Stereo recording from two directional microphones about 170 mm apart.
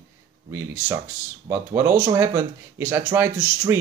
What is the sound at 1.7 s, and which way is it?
Speech, 15° right (ahead or behind).